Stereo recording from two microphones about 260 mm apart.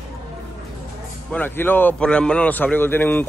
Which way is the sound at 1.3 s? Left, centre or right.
Centre.